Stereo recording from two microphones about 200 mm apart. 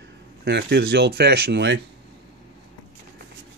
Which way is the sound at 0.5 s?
55° right (ahead or behind).